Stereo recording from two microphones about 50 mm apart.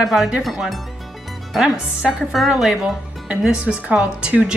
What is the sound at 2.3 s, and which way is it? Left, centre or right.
Speech, centre.